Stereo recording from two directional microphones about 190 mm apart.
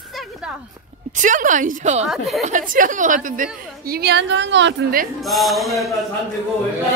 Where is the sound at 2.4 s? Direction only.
40° right (ahead or behind); by 4.7 s 70° right (ahead or behind).